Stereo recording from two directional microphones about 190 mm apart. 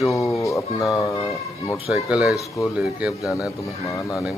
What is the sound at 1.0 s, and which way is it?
Speech, 15° left (ahead or behind).